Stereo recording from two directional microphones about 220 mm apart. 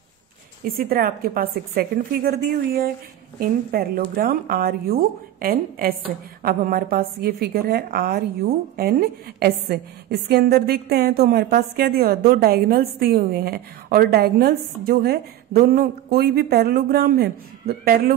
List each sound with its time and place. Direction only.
0.7 s a woman's voice: 40° right (ahead or behind)